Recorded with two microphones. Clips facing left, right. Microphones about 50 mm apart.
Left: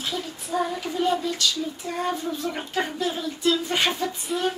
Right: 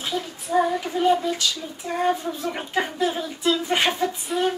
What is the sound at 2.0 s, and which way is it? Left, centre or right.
Speech, centre.